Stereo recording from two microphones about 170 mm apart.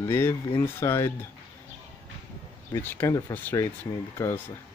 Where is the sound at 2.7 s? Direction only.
10° left (ahead or behind).